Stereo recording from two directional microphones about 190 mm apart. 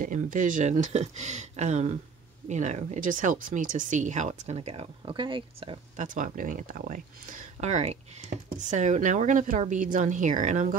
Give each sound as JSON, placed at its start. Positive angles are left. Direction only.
{"t": 0.0, "sound": "speech", "side_deg": -45}
{"t": 5.9, "sound": "speech", "side_deg": -45}